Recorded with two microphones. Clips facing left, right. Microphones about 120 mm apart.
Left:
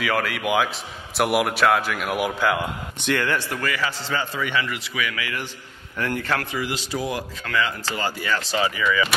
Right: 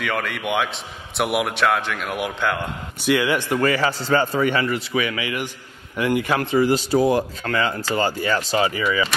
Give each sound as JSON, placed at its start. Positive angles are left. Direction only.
{"t": 0.0, "sound": "a man's voice", "side_deg": 0}
{"t": 3.1, "sound": "speech", "side_deg": -10}
{"t": 3.5, "sound": "speech", "side_deg": -30}
{"t": 4.0, "sound": "speech", "side_deg": -45}
{"t": 6.9, "sound": "speech", "side_deg": -30}